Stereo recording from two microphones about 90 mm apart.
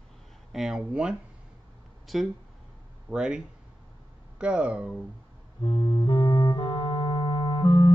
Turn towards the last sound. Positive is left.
turn(degrees=60)  # may be behind; listen again after turning